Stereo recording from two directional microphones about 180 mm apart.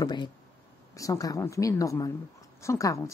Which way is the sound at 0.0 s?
25° left (ahead or behind).